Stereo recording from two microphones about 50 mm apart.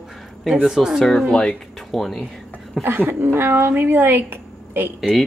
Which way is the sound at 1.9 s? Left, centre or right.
Centre.